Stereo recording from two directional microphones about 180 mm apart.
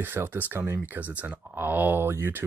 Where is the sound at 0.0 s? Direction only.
10° right (ahead or behind).